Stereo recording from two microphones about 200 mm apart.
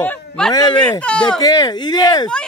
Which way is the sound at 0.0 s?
10° left (ahead or behind).